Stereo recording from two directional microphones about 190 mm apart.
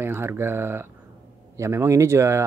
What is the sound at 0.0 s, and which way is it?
Speech, 10° right (ahead or behind).